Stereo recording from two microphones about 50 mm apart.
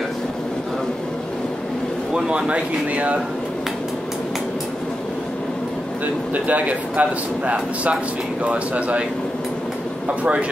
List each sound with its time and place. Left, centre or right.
2.1 s speech: centre
6.3 s speech: right
10.0 s speech: right